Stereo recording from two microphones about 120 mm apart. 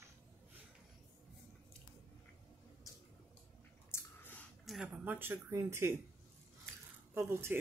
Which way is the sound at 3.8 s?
20° left (ahead or behind).